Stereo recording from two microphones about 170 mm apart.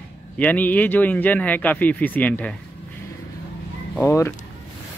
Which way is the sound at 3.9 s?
15° left (ahead or behind).